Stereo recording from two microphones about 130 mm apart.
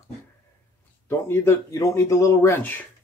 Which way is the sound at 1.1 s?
20° left (ahead or behind).